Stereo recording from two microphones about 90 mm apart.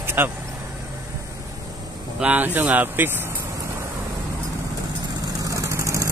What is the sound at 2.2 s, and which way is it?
Speech, 20° right (ahead or behind).